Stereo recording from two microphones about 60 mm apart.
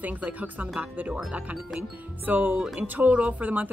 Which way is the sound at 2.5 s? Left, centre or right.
Centre.